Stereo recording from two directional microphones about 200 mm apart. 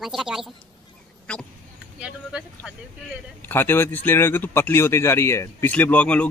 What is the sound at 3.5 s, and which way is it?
Speech, 10° left (ahead or behind).